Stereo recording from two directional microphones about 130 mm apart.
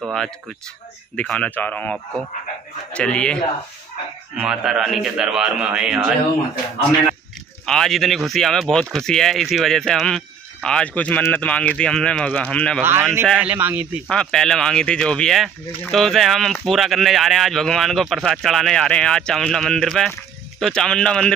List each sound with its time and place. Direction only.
0.0 s speech: 5° left (ahead or behind)
4.4 s speech: 5° right (ahead or behind)
7.6 s speech: 5° left (ahead or behind)
12.8 s speech: 20° right (ahead or behind)
14.0 s speech: 5° left (ahead or behind)